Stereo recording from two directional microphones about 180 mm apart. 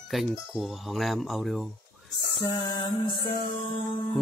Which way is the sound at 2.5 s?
25° left (ahead or behind).